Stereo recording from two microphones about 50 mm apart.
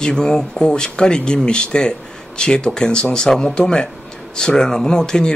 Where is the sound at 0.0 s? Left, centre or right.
Centre.